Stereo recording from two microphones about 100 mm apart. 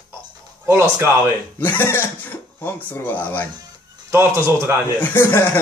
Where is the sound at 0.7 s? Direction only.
25° right (ahead or behind).